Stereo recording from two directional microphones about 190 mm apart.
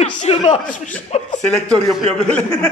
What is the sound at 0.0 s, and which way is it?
Chuckle, 35° left (ahead or behind).